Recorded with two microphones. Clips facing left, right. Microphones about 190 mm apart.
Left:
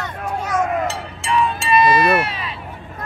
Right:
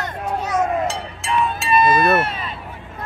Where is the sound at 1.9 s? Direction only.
Centre (ahead or behind).